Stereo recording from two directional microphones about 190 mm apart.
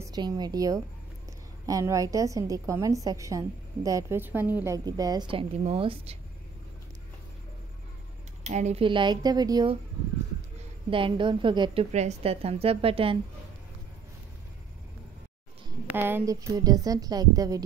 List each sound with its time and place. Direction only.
0.0 s a woman's voice: 20° right (ahead or behind)
8.5 s a woman's voice: 35° right (ahead or behind); by 9.8 s 20° right (ahead or behind)
10.9 s a woman's voice: 25° right (ahead or behind)
15.9 s a woman's voice: 10° right (ahead or behind)